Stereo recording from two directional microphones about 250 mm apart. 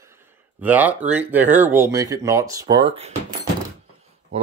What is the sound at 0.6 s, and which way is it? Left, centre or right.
Speech, centre.